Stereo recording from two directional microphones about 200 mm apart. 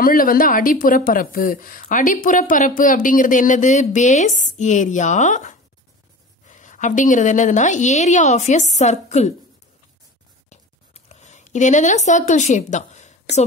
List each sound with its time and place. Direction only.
0.0 s a woman's voice: 45° left (ahead or behind)
11.1 s a woman's voice: 35° left (ahead or behind)